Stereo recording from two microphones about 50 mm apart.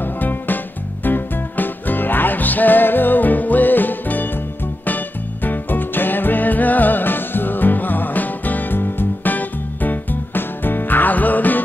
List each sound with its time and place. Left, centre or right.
0.0 s music: left